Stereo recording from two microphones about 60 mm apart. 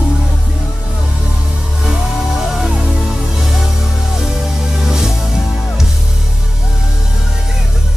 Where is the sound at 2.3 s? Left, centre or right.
Centre.